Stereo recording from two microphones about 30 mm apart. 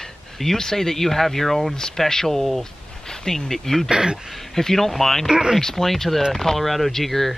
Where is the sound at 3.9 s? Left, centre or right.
Right.